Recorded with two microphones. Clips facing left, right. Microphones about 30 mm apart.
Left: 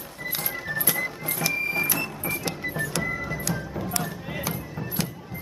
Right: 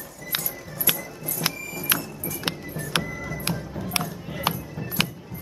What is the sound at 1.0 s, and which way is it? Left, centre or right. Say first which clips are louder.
Music: left 5 dB; left.